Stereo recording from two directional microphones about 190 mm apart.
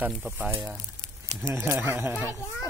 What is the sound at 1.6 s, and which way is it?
Speech, 10° right (ahead or behind).